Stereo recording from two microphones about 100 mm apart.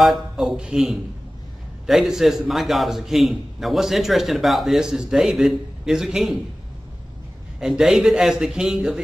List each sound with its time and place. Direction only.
0.0 s a man's voice: centre (ahead or behind)
7.6 s a man's voice: 5° right (ahead or behind)